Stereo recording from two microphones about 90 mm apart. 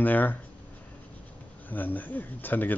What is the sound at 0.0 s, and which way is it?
Speech, 20° left (ahead or behind).